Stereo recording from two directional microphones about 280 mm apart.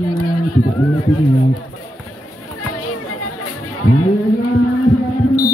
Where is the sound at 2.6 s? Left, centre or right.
Left.